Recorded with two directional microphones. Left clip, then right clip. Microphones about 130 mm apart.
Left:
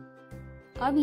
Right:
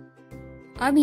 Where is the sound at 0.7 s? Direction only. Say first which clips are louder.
Right 5 dB; 25° right (ahead or behind).